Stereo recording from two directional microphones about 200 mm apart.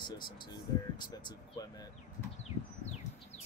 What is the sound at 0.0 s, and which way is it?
Speech, 20° left (ahead or behind).